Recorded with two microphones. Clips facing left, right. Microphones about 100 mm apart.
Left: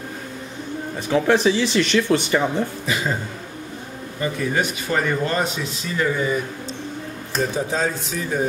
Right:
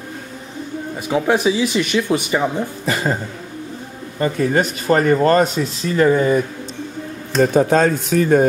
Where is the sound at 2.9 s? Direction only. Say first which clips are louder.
Right 7 dB; 45° right (ahead or behind).